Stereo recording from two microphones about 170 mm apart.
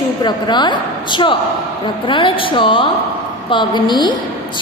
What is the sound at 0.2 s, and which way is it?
A woman's voice, 25° left (ahead or behind).